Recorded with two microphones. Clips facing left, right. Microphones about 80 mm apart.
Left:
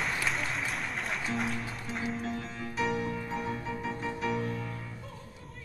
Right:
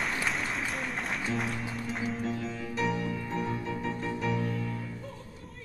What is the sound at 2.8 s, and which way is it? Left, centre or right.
Music, centre.